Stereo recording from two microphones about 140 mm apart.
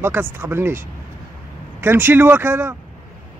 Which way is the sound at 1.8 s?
15° right (ahead or behind).